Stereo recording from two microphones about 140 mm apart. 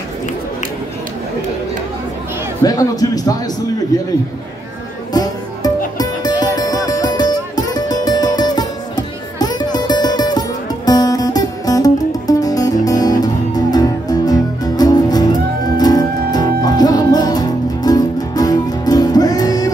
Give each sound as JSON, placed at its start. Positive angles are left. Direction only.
{"t": 2.6, "sound": "speech", "side_deg": 25}
{"t": 5.1, "sound": "music", "side_deg": 30}